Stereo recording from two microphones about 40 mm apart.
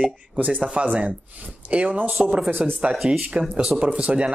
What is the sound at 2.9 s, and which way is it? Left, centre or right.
Speech, centre.